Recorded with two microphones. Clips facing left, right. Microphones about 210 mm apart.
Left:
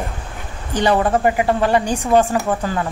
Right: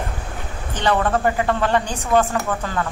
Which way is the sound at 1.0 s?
15° left (ahead or behind).